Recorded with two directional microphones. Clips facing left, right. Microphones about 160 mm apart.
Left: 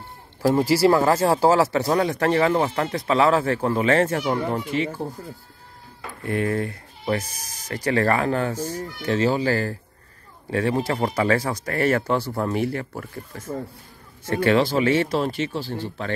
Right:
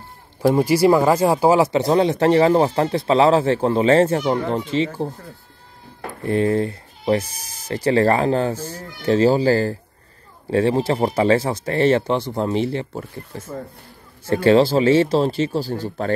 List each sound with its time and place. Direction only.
0.4 s speech: 20° right (ahead or behind)
6.2 s speech: 30° right (ahead or behind)